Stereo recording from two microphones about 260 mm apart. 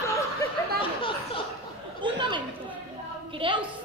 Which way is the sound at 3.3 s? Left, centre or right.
Centre.